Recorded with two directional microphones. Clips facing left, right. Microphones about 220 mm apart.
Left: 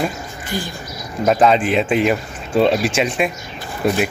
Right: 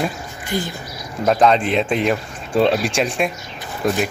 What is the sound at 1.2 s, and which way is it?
Speech, 5° left (ahead or behind).